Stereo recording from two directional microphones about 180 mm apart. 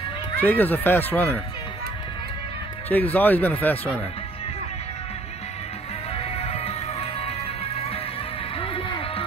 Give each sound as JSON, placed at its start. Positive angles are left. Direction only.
{"t": 0.4, "sound": "speech", "side_deg": 10}
{"t": 2.9, "sound": "speech", "side_deg": 10}
{"t": 6.1, "sound": "music", "side_deg": 35}
{"t": 8.5, "sound": "music", "side_deg": 30}